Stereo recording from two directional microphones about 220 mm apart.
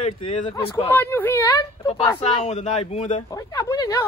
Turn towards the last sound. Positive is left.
turn(degrees=15)  # may be behind; listen again after turning